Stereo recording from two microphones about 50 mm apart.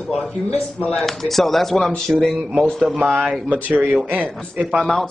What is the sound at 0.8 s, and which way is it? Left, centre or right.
Speech, centre.